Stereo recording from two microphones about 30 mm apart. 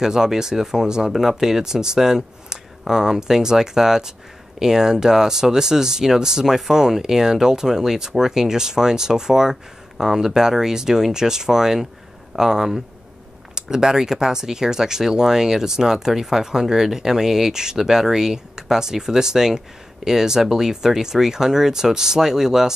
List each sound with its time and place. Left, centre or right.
0.0 s speech: centre